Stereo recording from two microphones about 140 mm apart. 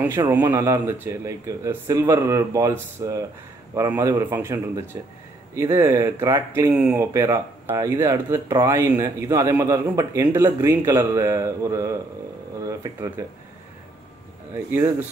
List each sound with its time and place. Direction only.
0.1 s speech: 25° right (ahead or behind)
6.7 s speech: 5° right (ahead or behind)
7.0 s speech: 20° right (ahead or behind)
14.5 s speech: 15° right (ahead or behind)